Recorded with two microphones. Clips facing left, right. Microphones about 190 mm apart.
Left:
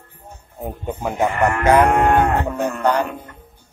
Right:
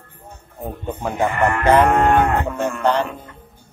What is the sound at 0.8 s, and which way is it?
Speech, 5° left (ahead or behind).